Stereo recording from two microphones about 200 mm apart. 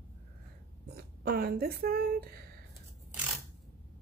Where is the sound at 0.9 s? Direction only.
50° right (ahead or behind).